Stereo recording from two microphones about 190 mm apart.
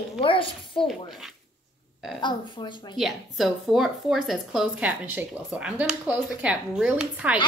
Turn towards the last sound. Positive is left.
turn(degrees=-5)  # may be behind; listen again after turning